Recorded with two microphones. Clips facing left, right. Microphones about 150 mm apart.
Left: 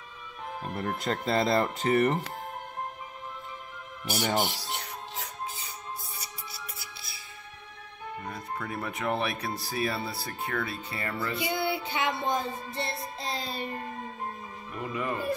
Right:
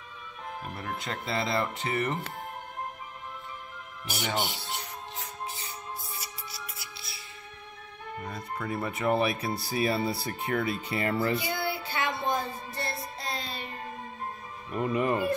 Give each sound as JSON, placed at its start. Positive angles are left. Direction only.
{"t": 0.7, "sound": "speech", "side_deg": 45}
{"t": 4.1, "sound": "speech", "side_deg": 40}
{"t": 8.3, "sound": "speech", "side_deg": 0}
{"t": 9.8, "sound": "speech", "side_deg": -20}
{"t": 11.3, "sound": "music", "side_deg": 20}
{"t": 13.3, "sound": "music", "side_deg": 0}
{"t": 14.8, "sound": "speech", "side_deg": -25}